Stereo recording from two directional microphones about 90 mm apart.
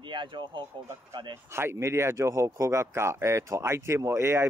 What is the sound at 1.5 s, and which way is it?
Speech, 30° right (ahead or behind).